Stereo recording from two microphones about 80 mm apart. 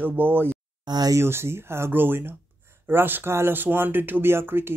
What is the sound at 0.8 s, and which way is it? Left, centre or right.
Speech, right.